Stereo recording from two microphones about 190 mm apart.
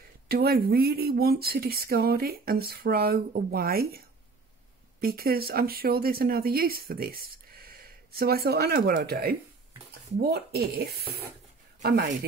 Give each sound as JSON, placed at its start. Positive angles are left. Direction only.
{"t": 0.3, "sound": "speech", "side_deg": -55}
{"t": 5.0, "sound": "speech", "side_deg": -50}